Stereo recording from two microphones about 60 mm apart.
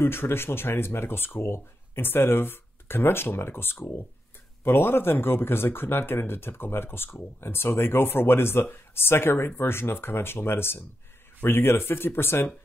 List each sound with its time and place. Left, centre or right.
0.0 s speech: left